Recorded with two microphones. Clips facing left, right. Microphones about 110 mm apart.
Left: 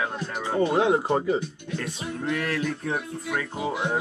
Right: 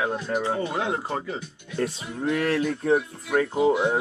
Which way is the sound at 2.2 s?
25° right (ahead or behind).